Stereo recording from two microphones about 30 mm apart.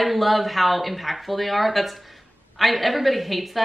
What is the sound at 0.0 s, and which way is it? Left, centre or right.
A woman's voice, centre.